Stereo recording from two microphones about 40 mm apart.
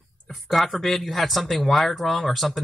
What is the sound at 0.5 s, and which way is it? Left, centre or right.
Speech, centre.